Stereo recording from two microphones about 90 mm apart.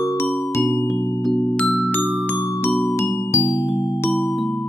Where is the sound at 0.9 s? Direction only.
Centre (ahead or behind).